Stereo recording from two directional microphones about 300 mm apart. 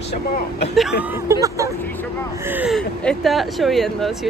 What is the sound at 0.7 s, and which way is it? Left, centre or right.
Speech, centre.